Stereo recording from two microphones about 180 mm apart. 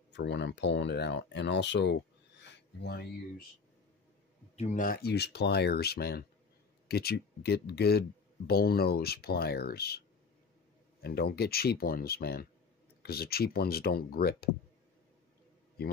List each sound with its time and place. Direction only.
0.1 s speech: 75° left (ahead or behind)
4.6 s speech: 45° left (ahead or behind)